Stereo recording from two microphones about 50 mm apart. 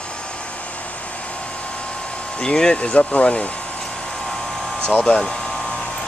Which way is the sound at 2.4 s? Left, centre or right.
Centre.